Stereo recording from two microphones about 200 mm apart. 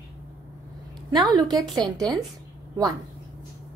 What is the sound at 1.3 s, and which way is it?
Speech, 20° right (ahead or behind).